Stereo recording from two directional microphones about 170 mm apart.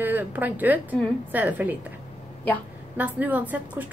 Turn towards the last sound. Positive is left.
turn(degrees=-10)  # may be behind; listen again after turning